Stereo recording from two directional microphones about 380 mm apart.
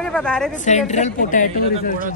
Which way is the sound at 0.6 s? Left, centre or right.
Centre.